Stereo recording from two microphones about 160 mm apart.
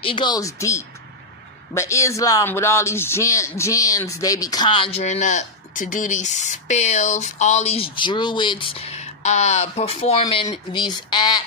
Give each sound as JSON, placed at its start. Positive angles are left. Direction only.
{"t": 0.0, "sound": "a man's voice", "side_deg": 30}